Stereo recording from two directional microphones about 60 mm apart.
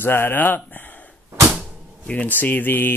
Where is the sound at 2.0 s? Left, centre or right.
Left.